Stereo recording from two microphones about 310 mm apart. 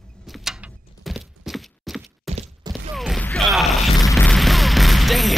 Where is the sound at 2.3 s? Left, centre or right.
Right.